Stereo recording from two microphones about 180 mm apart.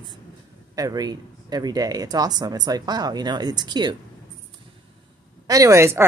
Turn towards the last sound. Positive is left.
turn(degrees=-15)  # may be behind; listen again after turning